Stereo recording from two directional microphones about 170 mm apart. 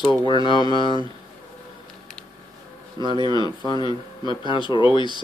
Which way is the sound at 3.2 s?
25° left (ahead or behind).